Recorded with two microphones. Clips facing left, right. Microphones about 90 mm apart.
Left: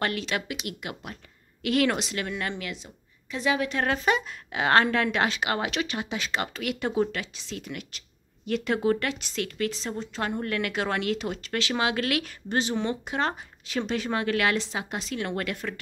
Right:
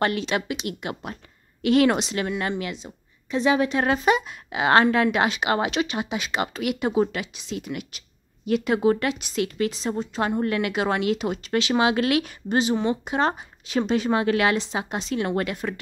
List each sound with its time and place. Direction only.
0.0 s speech: 25° right (ahead or behind)